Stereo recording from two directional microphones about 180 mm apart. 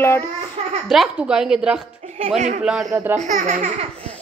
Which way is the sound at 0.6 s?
40° right (ahead or behind).